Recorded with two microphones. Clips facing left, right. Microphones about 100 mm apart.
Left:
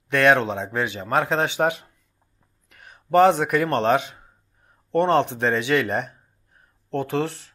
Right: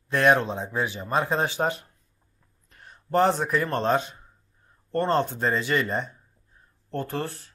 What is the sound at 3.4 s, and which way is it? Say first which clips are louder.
Speech: left 4 dB; 70° left (ahead or behind).